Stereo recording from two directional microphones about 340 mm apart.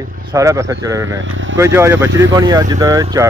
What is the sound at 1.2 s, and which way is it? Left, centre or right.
Speech, right.